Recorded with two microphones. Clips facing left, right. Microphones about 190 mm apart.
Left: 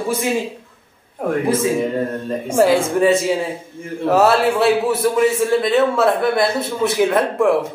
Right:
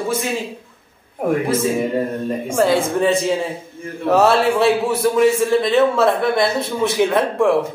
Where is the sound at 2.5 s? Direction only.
5° left (ahead or behind).